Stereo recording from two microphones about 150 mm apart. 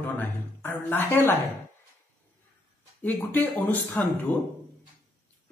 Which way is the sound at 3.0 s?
10° left (ahead or behind).